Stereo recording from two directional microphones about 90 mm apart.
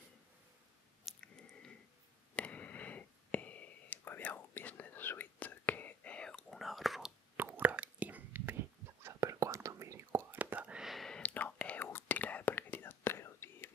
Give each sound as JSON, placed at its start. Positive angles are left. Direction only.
{"t": 1.1, "sound": "chewing", "side_deg": 0}
{"t": 2.3, "sound": "whispering", "side_deg": 15}
{"t": 6.6, "sound": "whispering", "side_deg": 0}
{"t": 7.3, "sound": "whispering", "side_deg": -20}
{"t": 10.3, "sound": "whispering", "side_deg": -20}
{"t": 10.9, "sound": "whispering", "side_deg": 5}